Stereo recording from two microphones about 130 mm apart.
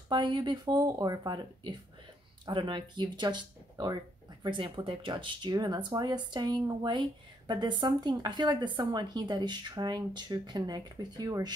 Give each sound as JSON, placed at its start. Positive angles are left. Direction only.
{"t": 0.1, "sound": "speech", "side_deg": -35}